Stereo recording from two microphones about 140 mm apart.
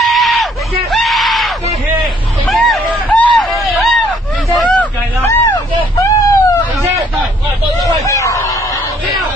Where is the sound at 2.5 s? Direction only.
Centre (ahead or behind).